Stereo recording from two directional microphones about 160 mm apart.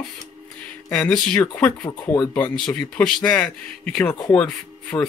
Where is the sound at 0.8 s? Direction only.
10° left (ahead or behind).